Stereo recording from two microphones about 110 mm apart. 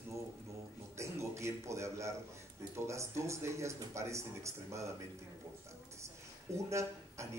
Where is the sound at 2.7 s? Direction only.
25° right (ahead or behind).